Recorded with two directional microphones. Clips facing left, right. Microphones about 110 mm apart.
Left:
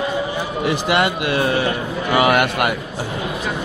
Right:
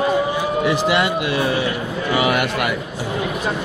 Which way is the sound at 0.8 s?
60° left (ahead or behind).